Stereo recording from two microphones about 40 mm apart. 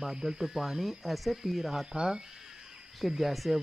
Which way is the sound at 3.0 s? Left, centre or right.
Centre.